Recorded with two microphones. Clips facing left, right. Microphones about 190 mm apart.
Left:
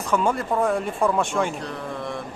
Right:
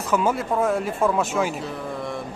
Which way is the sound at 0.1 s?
5° right (ahead or behind).